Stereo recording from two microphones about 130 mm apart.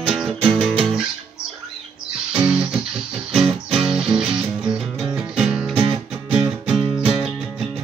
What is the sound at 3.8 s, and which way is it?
Music, 5° right (ahead or behind).